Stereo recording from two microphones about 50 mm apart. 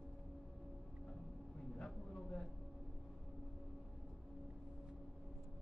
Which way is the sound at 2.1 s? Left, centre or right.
Centre.